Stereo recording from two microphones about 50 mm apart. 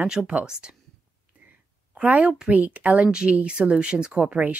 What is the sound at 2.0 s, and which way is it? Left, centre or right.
Speech, right.